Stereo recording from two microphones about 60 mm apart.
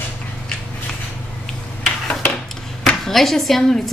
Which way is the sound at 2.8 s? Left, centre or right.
Centre.